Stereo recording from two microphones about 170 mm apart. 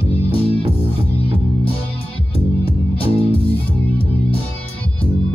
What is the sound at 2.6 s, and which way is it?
Music, 35° left (ahead or behind).